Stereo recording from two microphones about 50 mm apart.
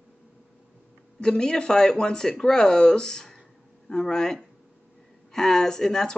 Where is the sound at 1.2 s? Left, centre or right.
Centre.